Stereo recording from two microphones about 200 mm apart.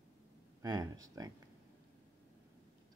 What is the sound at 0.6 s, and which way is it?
Speech, 15° right (ahead or behind).